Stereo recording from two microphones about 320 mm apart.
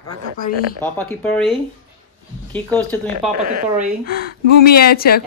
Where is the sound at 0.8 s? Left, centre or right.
Centre.